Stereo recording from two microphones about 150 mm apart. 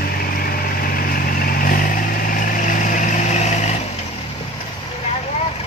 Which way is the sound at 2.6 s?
55° left (ahead or behind).